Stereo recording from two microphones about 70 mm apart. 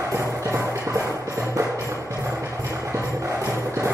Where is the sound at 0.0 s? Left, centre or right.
Right.